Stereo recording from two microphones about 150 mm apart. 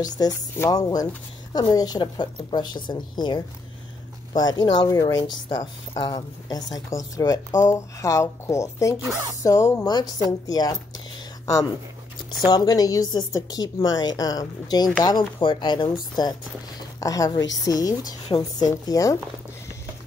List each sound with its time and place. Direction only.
0.0 s a woman's voice: 25° left (ahead or behind)
12.4 s a woman's voice: 25° left (ahead or behind)
17.0 s a woman's voice: 25° left (ahead or behind)